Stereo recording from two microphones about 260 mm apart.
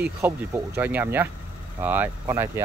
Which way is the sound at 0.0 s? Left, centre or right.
Centre.